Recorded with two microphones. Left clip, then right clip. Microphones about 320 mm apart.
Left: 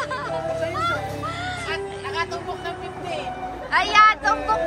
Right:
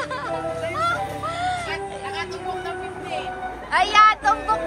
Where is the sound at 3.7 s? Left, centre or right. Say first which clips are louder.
Even; centre.